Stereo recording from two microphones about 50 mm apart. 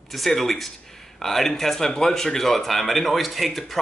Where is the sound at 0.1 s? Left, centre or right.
Centre.